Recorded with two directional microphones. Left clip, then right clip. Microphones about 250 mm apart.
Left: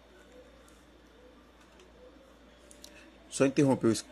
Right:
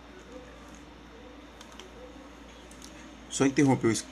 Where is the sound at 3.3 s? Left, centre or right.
Centre.